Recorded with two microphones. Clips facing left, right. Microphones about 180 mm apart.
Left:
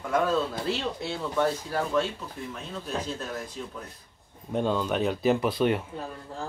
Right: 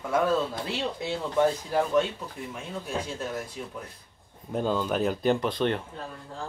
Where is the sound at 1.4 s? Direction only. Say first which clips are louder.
Right 3 dB; 15° right (ahead or behind).